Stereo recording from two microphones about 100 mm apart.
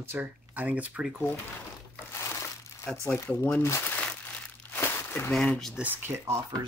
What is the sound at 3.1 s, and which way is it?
Speech, 25° left (ahead or behind).